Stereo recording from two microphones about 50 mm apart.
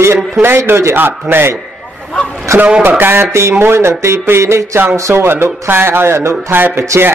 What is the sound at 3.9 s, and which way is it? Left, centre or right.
Speech, right.